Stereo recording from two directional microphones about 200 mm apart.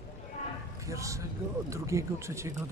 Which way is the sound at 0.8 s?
15° right (ahead or behind).